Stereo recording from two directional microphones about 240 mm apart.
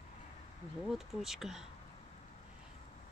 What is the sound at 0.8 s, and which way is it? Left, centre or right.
Speech, centre.